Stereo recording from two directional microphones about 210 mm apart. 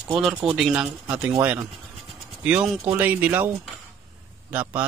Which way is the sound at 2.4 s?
5° right (ahead or behind).